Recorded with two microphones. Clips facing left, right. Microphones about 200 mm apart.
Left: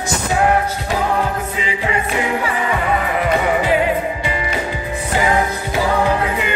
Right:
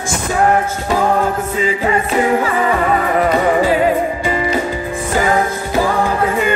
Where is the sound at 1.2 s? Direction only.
45° right (ahead or behind).